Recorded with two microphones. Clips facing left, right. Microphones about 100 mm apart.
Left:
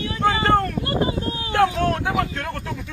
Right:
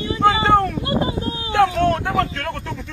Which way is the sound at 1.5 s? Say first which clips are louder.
Right 3 dB; 5° left (ahead or behind).